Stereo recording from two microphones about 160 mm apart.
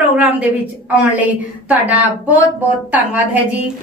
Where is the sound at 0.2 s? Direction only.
10° right (ahead or behind).